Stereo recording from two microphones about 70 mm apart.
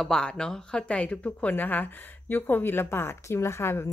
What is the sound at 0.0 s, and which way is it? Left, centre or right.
Speech, centre.